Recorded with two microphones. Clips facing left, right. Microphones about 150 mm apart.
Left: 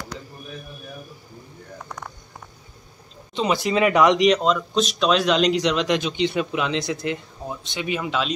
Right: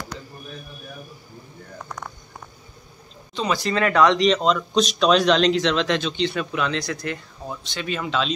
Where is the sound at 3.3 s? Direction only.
20° left (ahead or behind).